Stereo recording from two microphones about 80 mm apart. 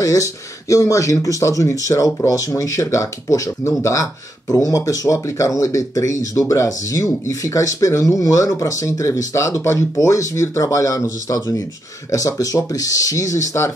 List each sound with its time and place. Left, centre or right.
0.0 s speech: left